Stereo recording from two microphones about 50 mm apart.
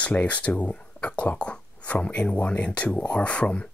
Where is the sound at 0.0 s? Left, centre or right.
Left.